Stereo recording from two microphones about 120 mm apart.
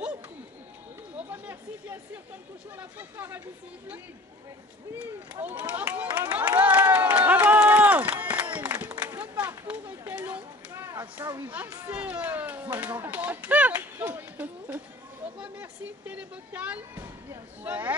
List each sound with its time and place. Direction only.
1.1 s chatter: 15° right (ahead or behind)
2.8 s speech: 15° right (ahead or behind)
4.9 s run: 10° right (ahead or behind)
9.0 s a sound: 20° right (ahead or behind)
10.7 s a sound: 25° right (ahead or behind)
11.1 s speech: 15° right (ahead or behind)
16.9 s speech: 20° right (ahead or behind)